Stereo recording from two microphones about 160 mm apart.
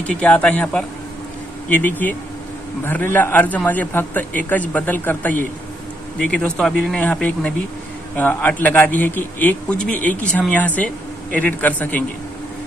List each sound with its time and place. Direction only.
0.0 s speech: 10° left (ahead or behind)